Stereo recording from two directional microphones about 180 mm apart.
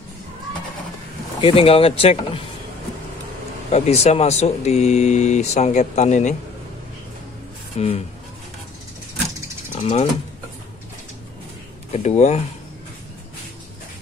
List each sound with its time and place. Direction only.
1.4 s speech: 30° left (ahead or behind)
3.7 s speech: 35° left (ahead or behind)
7.8 s speech: 35° left (ahead or behind)
9.7 s vehicle: 40° left (ahead or behind)
11.9 s speech: 40° left (ahead or behind)